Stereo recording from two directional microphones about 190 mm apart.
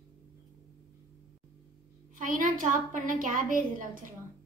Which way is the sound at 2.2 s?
45° right (ahead or behind).